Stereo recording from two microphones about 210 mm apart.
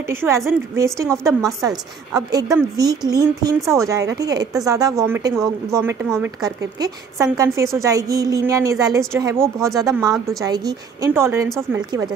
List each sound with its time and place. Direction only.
0.0 s a woman's voice: 10° right (ahead or behind)